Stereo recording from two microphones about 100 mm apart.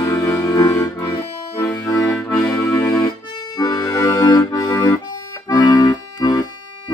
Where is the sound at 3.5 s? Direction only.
45° left (ahead or behind).